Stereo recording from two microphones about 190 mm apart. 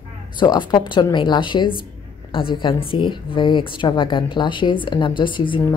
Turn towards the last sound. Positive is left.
turn(degrees=25)  # may be behind; listen again after turning